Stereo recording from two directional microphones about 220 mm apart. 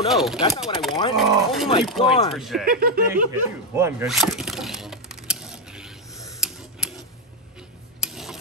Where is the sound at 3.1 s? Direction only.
10° right (ahead or behind).